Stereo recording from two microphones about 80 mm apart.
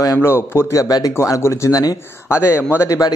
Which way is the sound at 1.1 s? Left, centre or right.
Left.